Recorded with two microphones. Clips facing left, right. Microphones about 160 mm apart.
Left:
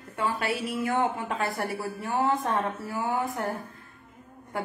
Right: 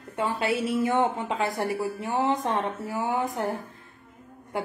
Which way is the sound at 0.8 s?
20° right (ahead or behind).